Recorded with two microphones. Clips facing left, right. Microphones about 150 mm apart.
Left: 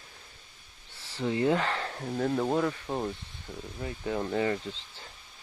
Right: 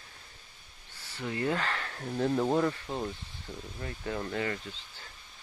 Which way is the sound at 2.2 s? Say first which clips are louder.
Even; centre (ahead or behind).